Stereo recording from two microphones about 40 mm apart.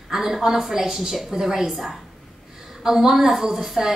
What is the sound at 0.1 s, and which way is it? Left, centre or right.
A woman's voice, centre.